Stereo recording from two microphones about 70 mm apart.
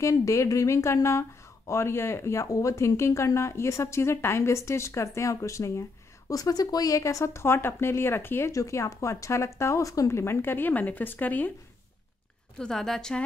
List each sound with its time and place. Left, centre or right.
0.0 s a woman's voice: left
2.4 s a woman's voice: left
7.4 s speech: left
8.5 s speech: left
12.5 s a woman's voice: centre